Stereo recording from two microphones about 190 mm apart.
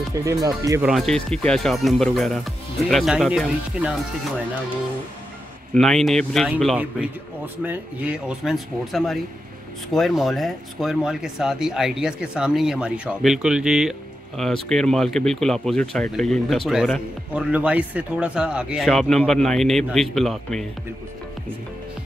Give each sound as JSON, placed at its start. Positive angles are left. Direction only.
{"t": 0.2, "sound": "speech", "side_deg": -15}
{"t": 0.8, "sound": "speech", "side_deg": 0}
{"t": 5.8, "sound": "speech", "side_deg": 0}